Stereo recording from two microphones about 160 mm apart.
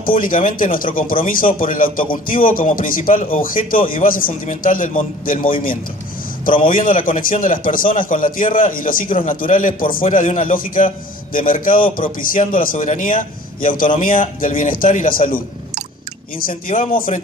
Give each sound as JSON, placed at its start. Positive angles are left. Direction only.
{"t": 0.2, "sound": "a man's voice", "side_deg": 55}
{"t": 10.0, "sound": "a man's voice", "side_deg": 50}